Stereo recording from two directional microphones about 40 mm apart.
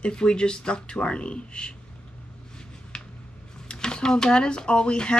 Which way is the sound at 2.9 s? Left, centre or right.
Centre.